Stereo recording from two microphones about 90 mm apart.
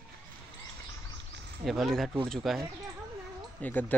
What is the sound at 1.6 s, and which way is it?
Speech, centre (ahead or behind).